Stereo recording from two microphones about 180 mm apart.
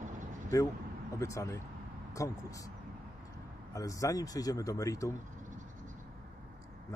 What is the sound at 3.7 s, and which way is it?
Speech, 20° left (ahead or behind).